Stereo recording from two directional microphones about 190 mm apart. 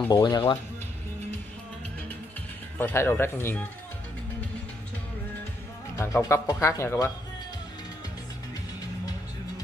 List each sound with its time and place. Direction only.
0.1 s speech: 20° left (ahead or behind)
2.8 s speech: 10° left (ahead or behind)
5.9 s speech: 15° left (ahead or behind)